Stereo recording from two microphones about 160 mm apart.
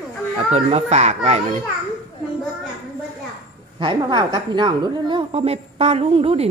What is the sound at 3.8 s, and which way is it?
A woman's voice, 30° right (ahead or behind).